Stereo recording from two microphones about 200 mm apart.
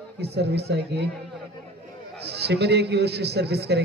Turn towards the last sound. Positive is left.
turn(degrees=-55)  # may be behind; listen again after turning